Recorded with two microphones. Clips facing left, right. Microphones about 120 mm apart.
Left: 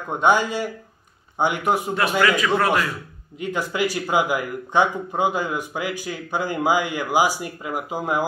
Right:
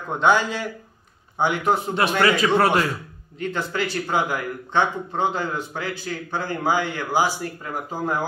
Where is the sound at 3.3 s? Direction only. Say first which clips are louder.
Left 1 dB; 10° left (ahead or behind).